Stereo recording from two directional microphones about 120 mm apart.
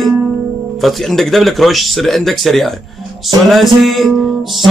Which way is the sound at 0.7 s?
Centre (ahead or behind).